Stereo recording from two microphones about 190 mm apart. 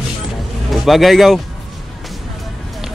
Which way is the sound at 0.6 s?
Centre (ahead or behind).